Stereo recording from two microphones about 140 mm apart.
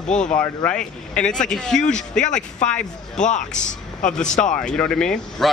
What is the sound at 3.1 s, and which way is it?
A man's voice, 60° left (ahead or behind).